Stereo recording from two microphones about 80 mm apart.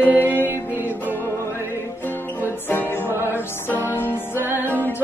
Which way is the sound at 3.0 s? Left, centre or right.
Right.